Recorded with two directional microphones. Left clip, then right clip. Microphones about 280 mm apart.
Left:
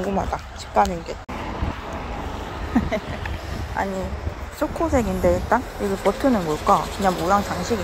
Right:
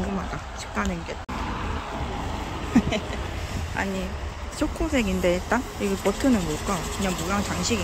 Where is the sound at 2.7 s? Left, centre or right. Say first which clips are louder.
Right 1 dB; centre.